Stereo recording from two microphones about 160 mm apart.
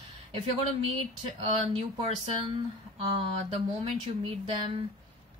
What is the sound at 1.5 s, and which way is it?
Speech, 35° right (ahead or behind).